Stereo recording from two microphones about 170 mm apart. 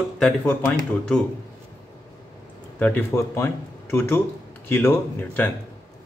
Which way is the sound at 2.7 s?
10° left (ahead or behind).